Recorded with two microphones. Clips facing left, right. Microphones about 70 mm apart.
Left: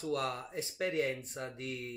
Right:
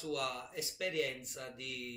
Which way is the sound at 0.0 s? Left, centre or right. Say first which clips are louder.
Left 3 dB; left.